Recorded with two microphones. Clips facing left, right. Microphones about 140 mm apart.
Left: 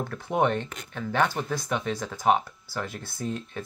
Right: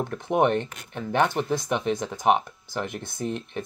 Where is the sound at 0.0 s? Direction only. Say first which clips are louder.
Right 3 dB; 20° right (ahead or behind).